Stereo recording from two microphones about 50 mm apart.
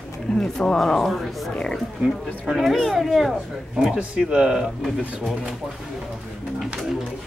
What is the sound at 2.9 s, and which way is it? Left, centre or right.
Speech, centre.